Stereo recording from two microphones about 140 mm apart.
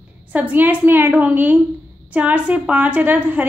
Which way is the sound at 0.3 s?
10° right (ahead or behind).